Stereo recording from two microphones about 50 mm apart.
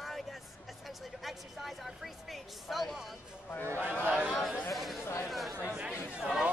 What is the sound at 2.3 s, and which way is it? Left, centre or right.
Speech, centre.